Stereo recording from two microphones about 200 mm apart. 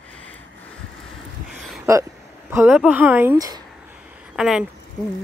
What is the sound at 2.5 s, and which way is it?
Speech, 10° right (ahead or behind).